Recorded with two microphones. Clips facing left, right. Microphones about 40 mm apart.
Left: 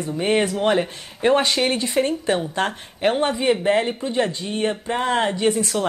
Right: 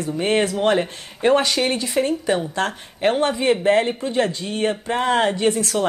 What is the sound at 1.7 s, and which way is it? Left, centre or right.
Speech, left.